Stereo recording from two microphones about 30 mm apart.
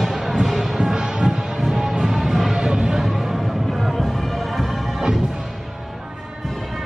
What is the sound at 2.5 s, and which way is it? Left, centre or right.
Music, right.